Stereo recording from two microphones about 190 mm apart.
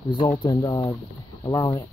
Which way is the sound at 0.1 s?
25° left (ahead or behind).